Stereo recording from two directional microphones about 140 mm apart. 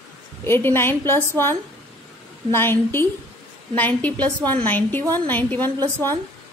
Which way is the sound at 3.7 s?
10° left (ahead or behind).